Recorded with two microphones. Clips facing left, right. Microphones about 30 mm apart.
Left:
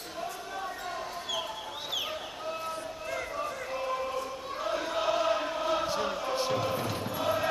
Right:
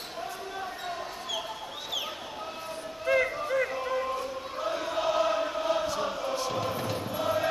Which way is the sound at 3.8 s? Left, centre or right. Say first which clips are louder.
Right 2 dB; centre.